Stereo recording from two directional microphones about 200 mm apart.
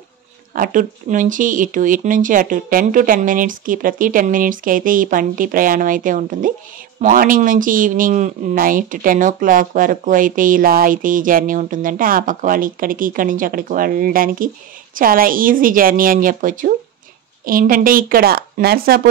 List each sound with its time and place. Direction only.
0.6 s speech: 40° right (ahead or behind)